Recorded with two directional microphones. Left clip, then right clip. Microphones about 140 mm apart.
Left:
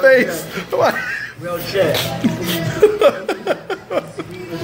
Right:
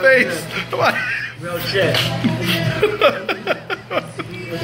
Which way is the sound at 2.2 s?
45° left (ahead or behind).